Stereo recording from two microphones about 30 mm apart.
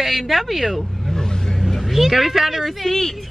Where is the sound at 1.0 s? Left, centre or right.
Centre.